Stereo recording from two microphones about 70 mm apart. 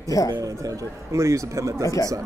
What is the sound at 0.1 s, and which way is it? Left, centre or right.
Speech, left.